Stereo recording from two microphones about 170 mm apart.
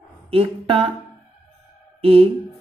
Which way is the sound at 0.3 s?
35° right (ahead or behind).